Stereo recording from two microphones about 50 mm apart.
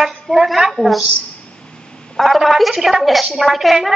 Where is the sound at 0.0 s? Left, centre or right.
Centre.